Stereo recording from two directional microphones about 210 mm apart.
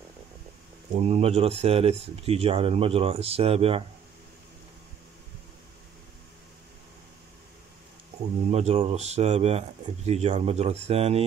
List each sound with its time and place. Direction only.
0.9 s speech: 30° right (ahead or behind)
8.5 s speech: 30° right (ahead or behind)